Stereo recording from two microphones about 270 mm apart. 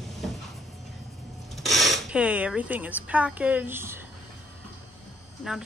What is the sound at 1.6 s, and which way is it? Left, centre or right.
Speech, centre.